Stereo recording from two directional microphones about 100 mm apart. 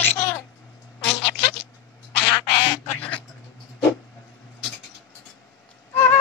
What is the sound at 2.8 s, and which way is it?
Duck, 15° left (ahead or behind).